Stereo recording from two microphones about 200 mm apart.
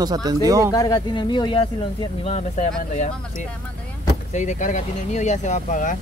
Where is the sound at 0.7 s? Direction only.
15° left (ahead or behind).